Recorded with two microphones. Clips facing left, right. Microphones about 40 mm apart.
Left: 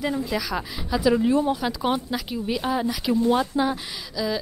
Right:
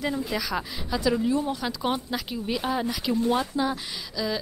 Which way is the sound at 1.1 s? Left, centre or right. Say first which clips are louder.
Left 6 dB; left.